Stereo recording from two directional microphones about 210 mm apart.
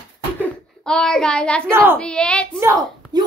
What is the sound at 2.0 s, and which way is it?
Speech, 5° left (ahead or behind).